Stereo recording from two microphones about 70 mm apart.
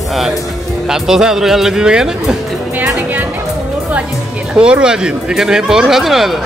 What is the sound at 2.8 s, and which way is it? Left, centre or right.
Music, right.